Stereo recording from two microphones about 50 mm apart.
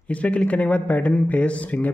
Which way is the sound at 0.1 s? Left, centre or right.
Left.